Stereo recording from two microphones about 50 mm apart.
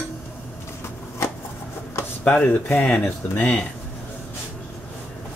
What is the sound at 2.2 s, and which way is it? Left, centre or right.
Speech, left.